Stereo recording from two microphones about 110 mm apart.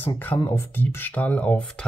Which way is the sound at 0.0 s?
15° left (ahead or behind).